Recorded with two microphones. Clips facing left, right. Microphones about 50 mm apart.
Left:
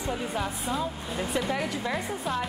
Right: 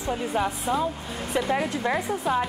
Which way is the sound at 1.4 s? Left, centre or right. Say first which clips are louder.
Right 4 dB; centre.